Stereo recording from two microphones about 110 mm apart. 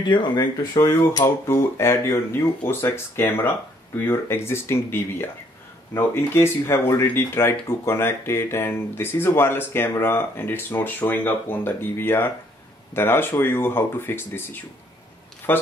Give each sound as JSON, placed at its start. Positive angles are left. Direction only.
{"t": 0.1, "sound": "speech", "side_deg": 45}
{"t": 0.7, "sound": "speech", "side_deg": 25}